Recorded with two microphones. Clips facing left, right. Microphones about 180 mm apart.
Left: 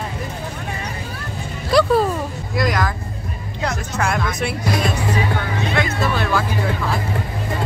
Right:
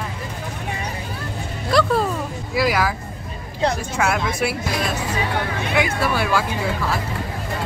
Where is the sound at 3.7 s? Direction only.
5° right (ahead or behind).